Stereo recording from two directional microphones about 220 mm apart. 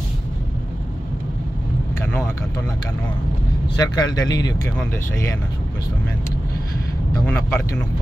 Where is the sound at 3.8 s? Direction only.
15° left (ahead or behind).